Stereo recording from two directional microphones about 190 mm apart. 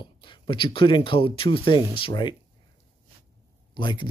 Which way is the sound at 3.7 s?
25° left (ahead or behind).